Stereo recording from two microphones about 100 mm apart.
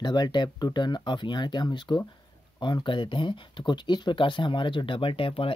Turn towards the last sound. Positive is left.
turn(degrees=65)  # may be behind; listen again after turning